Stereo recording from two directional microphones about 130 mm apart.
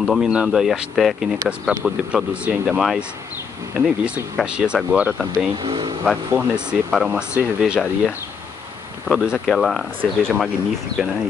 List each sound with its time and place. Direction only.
0.0 s speech: 5° right (ahead or behind)
5.6 s speech: 40° right (ahead or behind)
6.0 s speech: 5° right (ahead or behind)
9.0 s speech: 5° right (ahead or behind)